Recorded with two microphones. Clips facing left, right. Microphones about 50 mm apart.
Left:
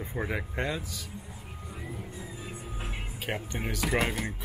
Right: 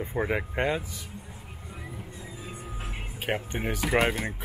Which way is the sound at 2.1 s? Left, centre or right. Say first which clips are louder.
Left 1 dB; centre.